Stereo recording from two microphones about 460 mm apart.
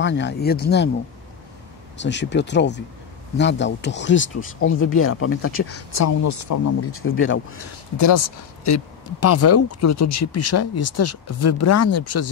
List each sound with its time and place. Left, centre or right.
0.0 s speech: left
2.0 s speech: left
8.6 s speech: left